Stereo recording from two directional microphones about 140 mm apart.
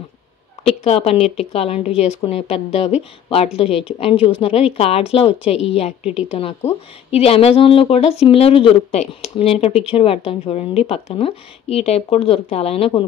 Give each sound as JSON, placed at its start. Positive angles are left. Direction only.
{"t": 0.7, "sound": "speech", "side_deg": 45}
{"t": 6.0, "sound": "a woman's voice", "side_deg": -5}
{"t": 7.1, "sound": "speech", "side_deg": 45}